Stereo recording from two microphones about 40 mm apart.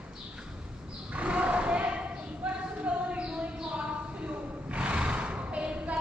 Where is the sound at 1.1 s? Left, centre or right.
Right.